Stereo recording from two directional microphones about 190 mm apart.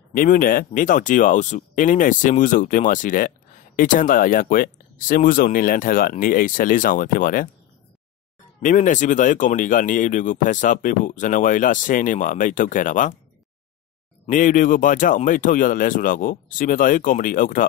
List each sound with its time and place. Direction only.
0.1 s speech: 45° left (ahead or behind)
8.6 s speech: 40° left (ahead or behind)
14.2 s speech: 45° left (ahead or behind)